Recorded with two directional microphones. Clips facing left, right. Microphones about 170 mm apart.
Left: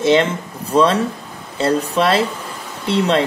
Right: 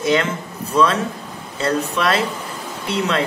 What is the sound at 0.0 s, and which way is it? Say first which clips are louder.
Speech: left 4 dB; 25° left (ahead or behind).